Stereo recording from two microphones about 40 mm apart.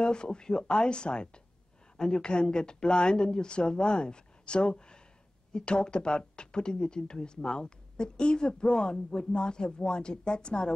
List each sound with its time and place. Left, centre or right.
0.0 s speech: left